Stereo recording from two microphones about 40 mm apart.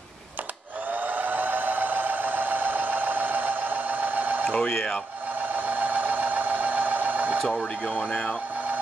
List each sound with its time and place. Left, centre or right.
1.0 s a sound: right
4.5 s speech: centre
5.5 s sewing machine: right
7.9 s speech: left